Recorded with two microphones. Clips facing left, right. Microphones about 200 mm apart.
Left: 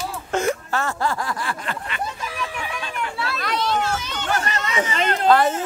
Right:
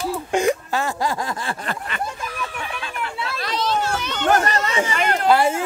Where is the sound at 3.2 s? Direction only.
25° right (ahead or behind).